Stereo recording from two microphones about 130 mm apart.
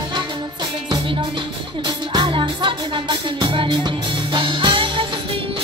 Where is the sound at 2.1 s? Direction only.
40° right (ahead or behind).